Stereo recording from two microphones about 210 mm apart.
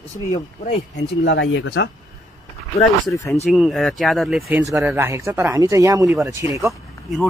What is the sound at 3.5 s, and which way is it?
Speech, centre (ahead or behind).